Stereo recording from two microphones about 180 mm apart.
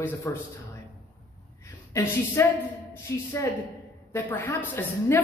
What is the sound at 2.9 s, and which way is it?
A man's voice, 15° left (ahead or behind).